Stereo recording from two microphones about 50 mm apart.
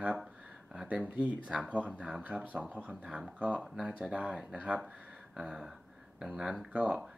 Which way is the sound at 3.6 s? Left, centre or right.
Centre.